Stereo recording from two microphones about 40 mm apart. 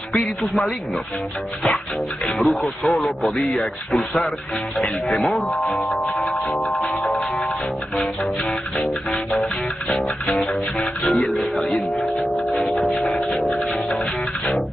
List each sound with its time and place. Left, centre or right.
0.2 s speech: centre
2.2 s speech: centre
6.3 s music: left
11.1 s speech: centre
12.9 s speech: centre
13.8 s music: centre